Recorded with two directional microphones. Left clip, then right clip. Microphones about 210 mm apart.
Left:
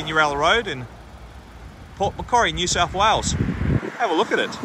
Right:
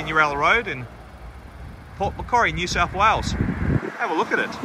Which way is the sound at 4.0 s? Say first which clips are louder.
Left 2 dB; centre (ahead or behind).